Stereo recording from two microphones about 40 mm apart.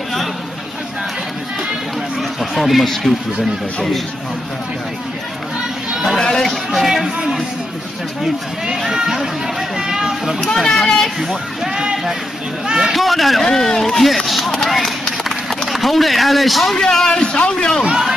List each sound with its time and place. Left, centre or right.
2.1 s a sound: centre
6.1 s a sound: centre
6.7 s music: centre
8.2 s speech: centre
10.4 s speech: centre
11.1 s speech: centre
12.9 s speech: centre
16.7 s speech: centre